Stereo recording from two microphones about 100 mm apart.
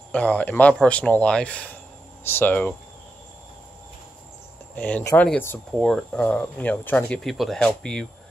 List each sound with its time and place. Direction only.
0.1 s speech: 15° left (ahead or behind)
4.7 s speech: 15° left (ahead or behind)
7.2 s speech: centre (ahead or behind)